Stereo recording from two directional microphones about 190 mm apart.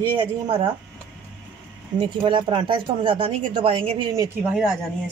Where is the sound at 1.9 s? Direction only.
25° right (ahead or behind).